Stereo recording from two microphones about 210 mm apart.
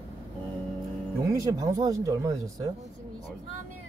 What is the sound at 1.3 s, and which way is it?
A man's voice, 15° right (ahead or behind).